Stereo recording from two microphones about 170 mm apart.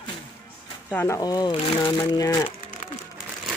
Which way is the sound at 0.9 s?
15° left (ahead or behind).